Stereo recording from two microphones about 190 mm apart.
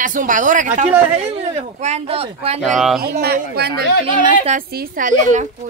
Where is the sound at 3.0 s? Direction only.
55° right (ahead or behind).